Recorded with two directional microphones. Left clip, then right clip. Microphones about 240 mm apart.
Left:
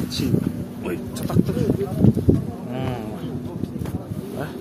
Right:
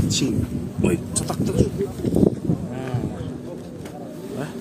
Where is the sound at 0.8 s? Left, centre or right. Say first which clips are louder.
Right 6 dB; right.